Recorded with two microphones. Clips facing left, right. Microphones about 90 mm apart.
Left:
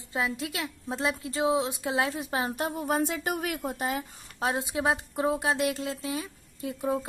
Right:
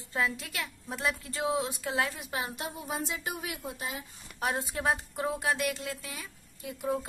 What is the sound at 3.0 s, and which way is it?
A woman's voice, 60° left (ahead or behind).